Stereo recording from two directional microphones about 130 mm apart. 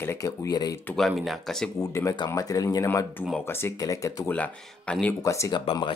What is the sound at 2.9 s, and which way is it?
Speech, 15° left (ahead or behind).